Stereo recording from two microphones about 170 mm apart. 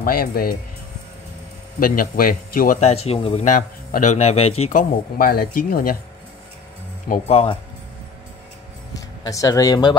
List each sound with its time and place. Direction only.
0.0 s a man's voice: 60° left (ahead or behind)
1.8 s a man's voice: 55° left (ahead or behind)
2.8 s speech: 35° left (ahead or behind)
3.5 s a man's voice: 50° left (ahead or behind)
7.1 s speech: 40° left (ahead or behind)
8.9 s speech: 20° left (ahead or behind)